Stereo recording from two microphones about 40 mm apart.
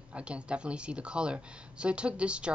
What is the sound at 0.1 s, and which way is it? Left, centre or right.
Speech, right.